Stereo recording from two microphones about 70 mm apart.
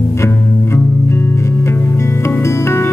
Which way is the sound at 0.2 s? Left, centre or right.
Left.